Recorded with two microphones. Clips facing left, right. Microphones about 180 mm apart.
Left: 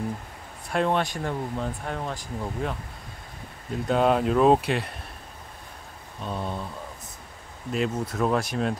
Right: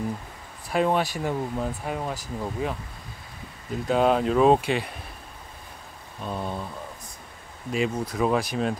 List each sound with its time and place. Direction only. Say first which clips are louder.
0.7 s speech: right 1 dB; 5° right (ahead or behind)
3.8 s speech: even; centre (ahead or behind)
6.2 s speech: right 1 dB; centre (ahead or behind)
7.7 s speech: right 1 dB; centre (ahead or behind)